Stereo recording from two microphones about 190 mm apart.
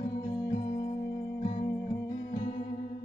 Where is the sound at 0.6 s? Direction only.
40° left (ahead or behind).